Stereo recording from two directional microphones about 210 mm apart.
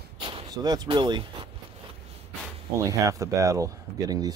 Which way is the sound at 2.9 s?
15° right (ahead or behind).